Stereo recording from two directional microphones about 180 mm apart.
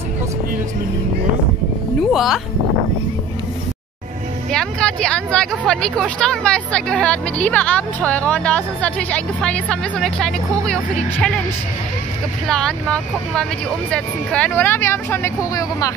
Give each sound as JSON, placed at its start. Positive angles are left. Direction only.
{"t": 2.1, "sound": "speech", "side_deg": 0}
{"t": 4.5, "sound": "a sound", "side_deg": 5}
{"t": 5.7, "sound": "speech", "side_deg": 5}
{"t": 12.4, "sound": "speech", "side_deg": 5}